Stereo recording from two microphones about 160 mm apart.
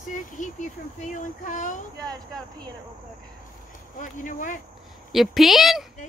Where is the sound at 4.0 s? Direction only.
55° left (ahead or behind).